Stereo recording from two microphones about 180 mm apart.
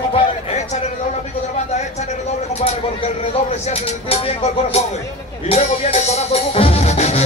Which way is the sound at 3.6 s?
35° left (ahead or behind).